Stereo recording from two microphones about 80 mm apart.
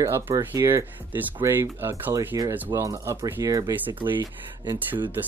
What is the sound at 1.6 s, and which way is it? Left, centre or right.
Speech, right.